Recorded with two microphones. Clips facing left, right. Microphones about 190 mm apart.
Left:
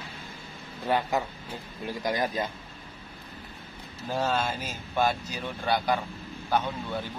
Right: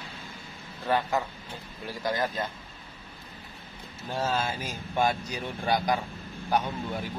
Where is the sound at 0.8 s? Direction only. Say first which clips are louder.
Even; 15° left (ahead or behind).